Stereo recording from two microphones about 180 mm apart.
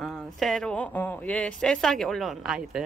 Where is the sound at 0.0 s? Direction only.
Centre (ahead or behind).